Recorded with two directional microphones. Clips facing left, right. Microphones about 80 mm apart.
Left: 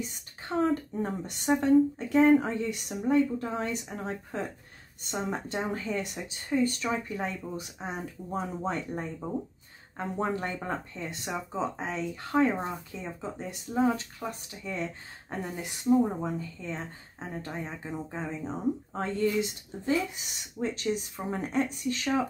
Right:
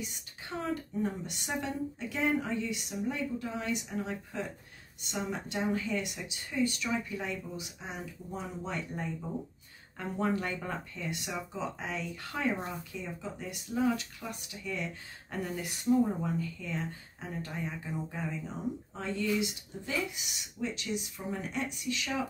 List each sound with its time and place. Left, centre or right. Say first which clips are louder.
0.0 s speech: left 4 dB; left